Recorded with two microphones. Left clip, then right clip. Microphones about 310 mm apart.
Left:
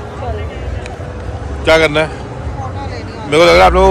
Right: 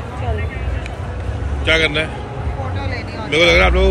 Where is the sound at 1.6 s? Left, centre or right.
Left.